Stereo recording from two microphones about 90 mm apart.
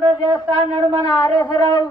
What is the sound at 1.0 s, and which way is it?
Speech, 45° left (ahead or behind).